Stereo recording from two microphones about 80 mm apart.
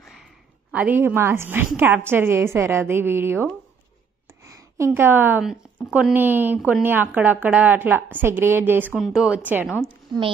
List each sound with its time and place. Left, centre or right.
0.7 s a woman's voice: centre
4.7 s a woman's voice: right
5.4 s speech: centre
6.1 s a woman's voice: right
8.9 s speech: centre
9.4 s a woman's voice: right
10.1 s a woman's voice: right